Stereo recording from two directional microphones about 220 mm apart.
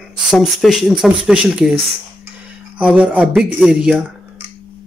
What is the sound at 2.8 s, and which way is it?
Speech, 5° right (ahead or behind).